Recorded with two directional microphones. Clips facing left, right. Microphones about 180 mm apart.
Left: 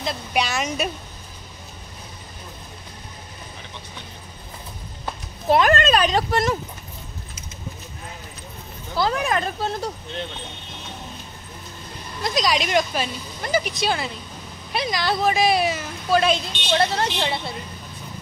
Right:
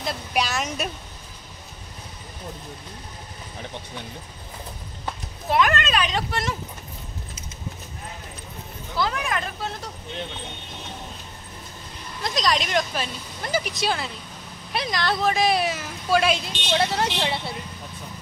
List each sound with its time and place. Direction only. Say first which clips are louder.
0.0 s speech: left 2 dB; centre (ahead or behind)
5.5 s speech: left 5 dB; 35° left (ahead or behind)
8.9 s speech: left 4 dB; 35° left (ahead or behind)
12.4 s speech: left 2 dB; 5° left (ahead or behind)